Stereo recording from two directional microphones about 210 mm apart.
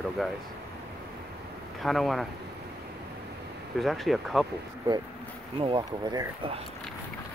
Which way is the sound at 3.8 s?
Centre (ahead or behind).